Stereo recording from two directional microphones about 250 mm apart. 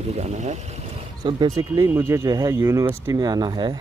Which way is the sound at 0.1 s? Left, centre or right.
Right.